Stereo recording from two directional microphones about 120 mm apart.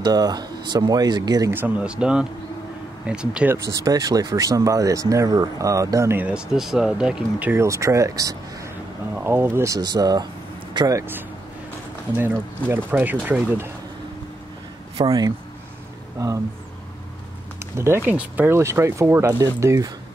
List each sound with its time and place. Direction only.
0.0 s speech: 35° right (ahead or behind)
1.5 s speech: 15° right (ahead or behind)
3.5 s speech: 30° right (ahead or behind)
6.2 s speech: 5° right (ahead or behind)
7.6 s speech: 25° right (ahead or behind)
11.0 s speech: 15° right (ahead or behind)
15.0 s speech: 45° right (ahead or behind)
16.2 s speech: 30° right (ahead or behind)
17.7 s speech: 20° right (ahead or behind)